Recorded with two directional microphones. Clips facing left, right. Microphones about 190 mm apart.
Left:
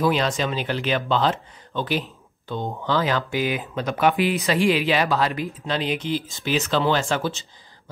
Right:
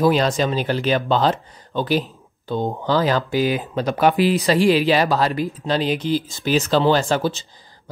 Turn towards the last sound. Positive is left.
turn(degrees=-35)  # may be behind; listen again after turning